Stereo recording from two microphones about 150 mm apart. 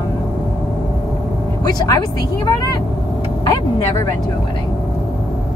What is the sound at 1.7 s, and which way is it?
Speech, 25° left (ahead or behind).